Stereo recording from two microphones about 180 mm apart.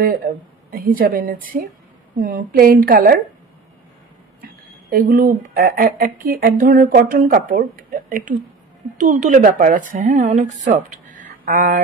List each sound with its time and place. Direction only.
0.0 s a woman's voice: 50° right (ahead or behind)
4.4 s a woman's voice: 55° right (ahead or behind)